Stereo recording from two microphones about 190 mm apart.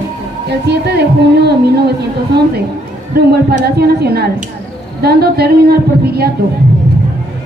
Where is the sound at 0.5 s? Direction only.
60° right (ahead or behind).